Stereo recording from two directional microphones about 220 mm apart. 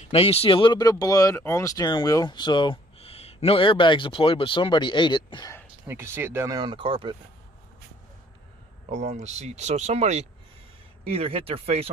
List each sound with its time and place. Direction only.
0.0 s speech: 25° left (ahead or behind)
5.9 s speech: 10° right (ahead or behind)
8.9 s speech: 30° right (ahead or behind)